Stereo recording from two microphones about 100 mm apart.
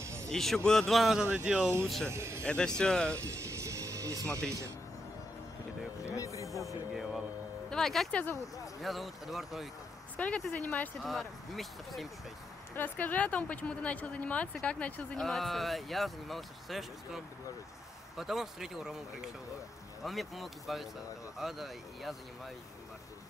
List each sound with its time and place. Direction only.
0.0 s a sound: 30° right (ahead or behind)
0.3 s speech: 5° left (ahead or behind)
2.0 s a man's voice: 30° right (ahead or behind)
2.4 s speech: 10° left (ahead or behind)
3.2 s music: 30° right (ahead or behind)
4.3 s speech: 10° left (ahead or behind)
6.0 s a sound: 35° left (ahead or behind)
7.7 s speech: 5° left (ahead or behind)
10.1 s speech: 15° left (ahead or behind)
11.0 s speech: centre (ahead or behind)
12.7 s speech: 20° left (ahead or behind); by 22.1 s centre (ahead or behind)